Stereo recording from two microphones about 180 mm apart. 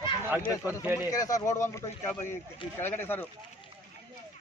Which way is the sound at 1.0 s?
20° left (ahead or behind).